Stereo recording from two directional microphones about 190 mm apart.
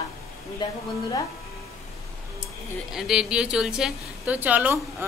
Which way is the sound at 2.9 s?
5° right (ahead or behind).